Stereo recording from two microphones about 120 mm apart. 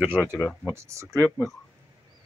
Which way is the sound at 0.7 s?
25° right (ahead or behind).